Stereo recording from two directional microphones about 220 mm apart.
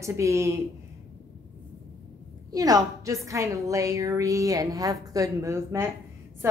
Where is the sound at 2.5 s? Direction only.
15° right (ahead or behind).